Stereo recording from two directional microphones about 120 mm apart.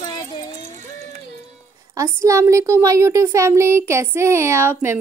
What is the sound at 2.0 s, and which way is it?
Speech, 25° right (ahead or behind).